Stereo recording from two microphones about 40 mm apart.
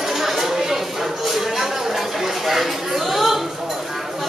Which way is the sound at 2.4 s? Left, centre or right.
Centre.